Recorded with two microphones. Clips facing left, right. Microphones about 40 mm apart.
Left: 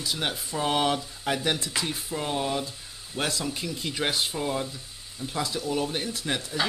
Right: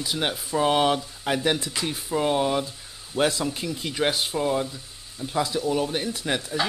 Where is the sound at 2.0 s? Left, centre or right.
Centre.